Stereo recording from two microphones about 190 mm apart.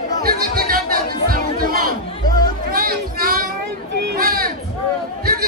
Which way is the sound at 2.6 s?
50° right (ahead or behind).